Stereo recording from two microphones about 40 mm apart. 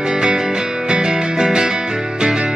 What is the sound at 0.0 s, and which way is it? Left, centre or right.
Music, centre.